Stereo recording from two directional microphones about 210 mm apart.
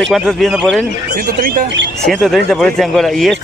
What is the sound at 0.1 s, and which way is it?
Speech, centre (ahead or behind).